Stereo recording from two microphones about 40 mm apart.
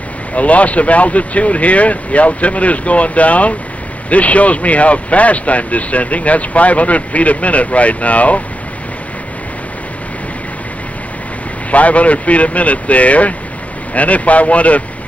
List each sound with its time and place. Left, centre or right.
0.3 s speech: left
11.7 s speech: left